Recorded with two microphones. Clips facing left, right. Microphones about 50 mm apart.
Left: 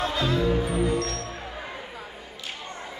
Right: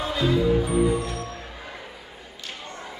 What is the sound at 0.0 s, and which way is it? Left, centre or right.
Music, centre.